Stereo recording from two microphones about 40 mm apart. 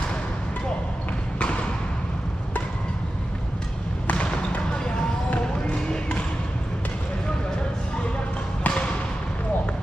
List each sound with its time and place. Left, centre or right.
4.1 s basketball bounce: left
8.6 s basketball bounce: left